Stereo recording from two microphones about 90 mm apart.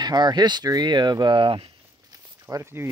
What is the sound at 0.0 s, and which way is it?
Speech, 50° right (ahead or behind).